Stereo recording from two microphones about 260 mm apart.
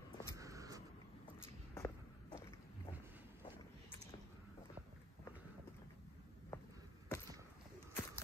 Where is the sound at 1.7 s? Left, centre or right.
Centre.